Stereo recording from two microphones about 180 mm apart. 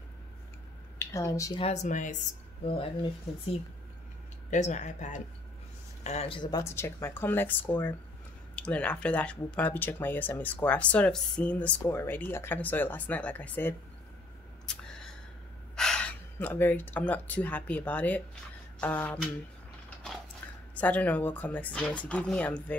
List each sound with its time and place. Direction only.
0.9 s speech: 15° left (ahead or behind)
1.6 s speech: 40° left (ahead or behind)
2.6 s speech: 30° left (ahead or behind)
4.5 s speech: 40° left (ahead or behind); by 13.7 s 10° left (ahead or behind)
15.7 s speech: 5° left (ahead or behind)
20.7 s speech: 10° left (ahead or behind)